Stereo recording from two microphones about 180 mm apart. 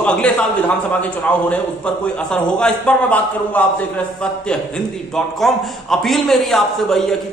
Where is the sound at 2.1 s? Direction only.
5° left (ahead or behind).